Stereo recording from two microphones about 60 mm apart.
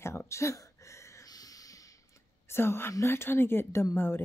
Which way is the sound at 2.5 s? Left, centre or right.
Left.